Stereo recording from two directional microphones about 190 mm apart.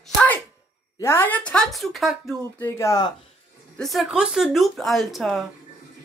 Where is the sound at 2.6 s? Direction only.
15° left (ahead or behind).